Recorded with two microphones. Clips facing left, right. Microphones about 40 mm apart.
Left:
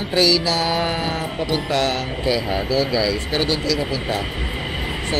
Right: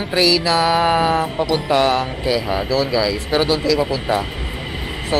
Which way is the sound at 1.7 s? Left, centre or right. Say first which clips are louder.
Right 6 dB; centre.